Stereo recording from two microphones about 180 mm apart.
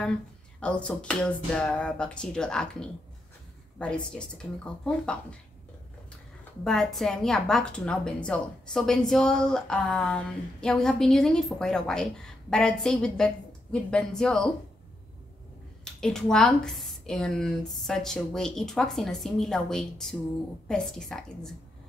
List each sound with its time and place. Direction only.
0.6 s speech: 5° left (ahead or behind)
6.6 s speech: centre (ahead or behind)
15.8 s speech: 5° left (ahead or behind)